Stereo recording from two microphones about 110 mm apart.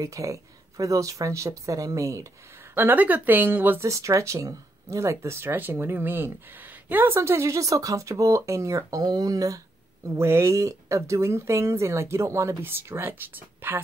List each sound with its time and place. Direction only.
0.0 s speech: 30° right (ahead or behind)
2.7 s speech: 15° right (ahead or behind)
3.9 s speech: 30° right (ahead or behind)